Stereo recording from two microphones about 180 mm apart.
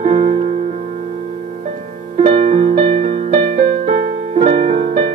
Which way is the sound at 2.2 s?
30° right (ahead or behind).